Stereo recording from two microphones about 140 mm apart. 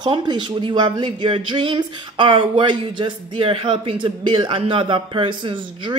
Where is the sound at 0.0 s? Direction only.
30° right (ahead or behind).